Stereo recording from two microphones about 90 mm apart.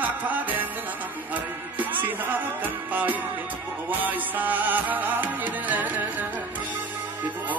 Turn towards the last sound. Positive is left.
turn(degrees=-20)  # may be behind; listen again after turning